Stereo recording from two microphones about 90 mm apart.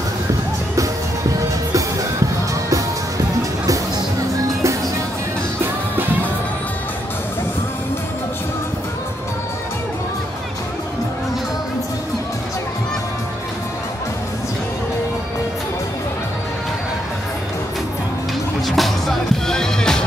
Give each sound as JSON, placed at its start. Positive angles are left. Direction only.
{"t": 1.7, "sound": "music", "side_deg": -35}
{"t": 3.6, "sound": "music", "side_deg": -40}
{"t": 18.7, "sound": "music", "side_deg": 0}